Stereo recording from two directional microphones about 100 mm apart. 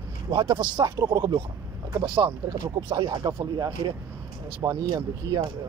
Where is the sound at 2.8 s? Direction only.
50° right (ahead or behind).